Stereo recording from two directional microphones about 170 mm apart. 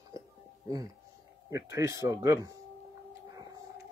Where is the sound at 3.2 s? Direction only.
20° right (ahead or behind).